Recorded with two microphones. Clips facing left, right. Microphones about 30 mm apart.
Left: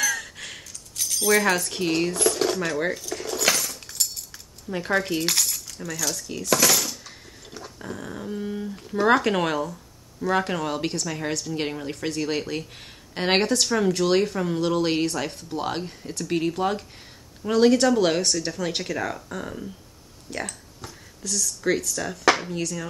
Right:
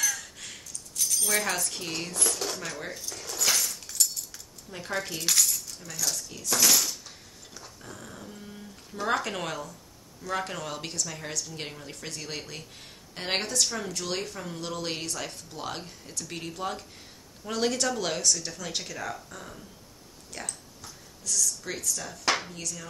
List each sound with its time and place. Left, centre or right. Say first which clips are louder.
0.0 s a sound: left 6 dB; left
0.9 s speech: left 7 dB; left
2.9 s cutlery: left 9 dB; left
3.8 s keys jangling: even; left
4.6 s speech: left 9 dB; left
6.4 s cutlery: left 5 dB; left
7.5 s speech: left 9 dB; left
19.3 s speech: left 10 dB; left